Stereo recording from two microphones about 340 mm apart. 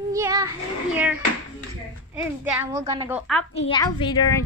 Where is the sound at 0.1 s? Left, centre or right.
Centre.